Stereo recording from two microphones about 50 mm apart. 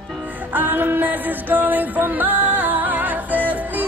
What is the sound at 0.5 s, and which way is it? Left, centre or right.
Music, right.